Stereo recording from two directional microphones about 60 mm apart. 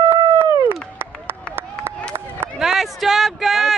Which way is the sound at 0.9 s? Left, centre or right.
Right.